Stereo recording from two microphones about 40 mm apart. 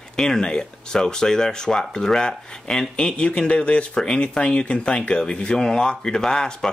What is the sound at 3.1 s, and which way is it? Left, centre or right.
Speech, left.